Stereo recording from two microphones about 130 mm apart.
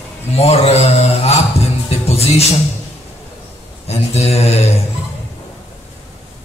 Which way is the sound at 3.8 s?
55° left (ahead or behind).